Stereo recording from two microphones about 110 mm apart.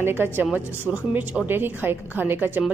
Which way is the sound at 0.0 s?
20° right (ahead or behind).